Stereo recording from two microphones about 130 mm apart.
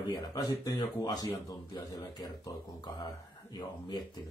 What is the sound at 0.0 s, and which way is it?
Speech, 30° left (ahead or behind).